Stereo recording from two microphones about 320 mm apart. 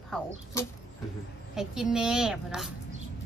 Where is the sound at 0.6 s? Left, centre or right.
Centre.